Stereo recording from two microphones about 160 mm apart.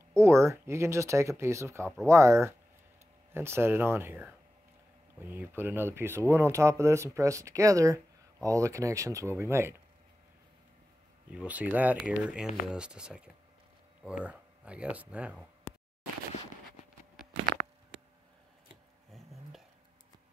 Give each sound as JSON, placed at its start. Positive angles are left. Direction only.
{"t": 0.1, "sound": "speech", "side_deg": -15}
{"t": 11.3, "sound": "speech", "side_deg": -10}
{"t": 19.1, "sound": "a sound", "side_deg": 0}